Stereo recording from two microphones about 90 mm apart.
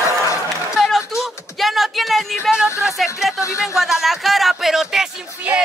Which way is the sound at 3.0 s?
Centre (ahead or behind).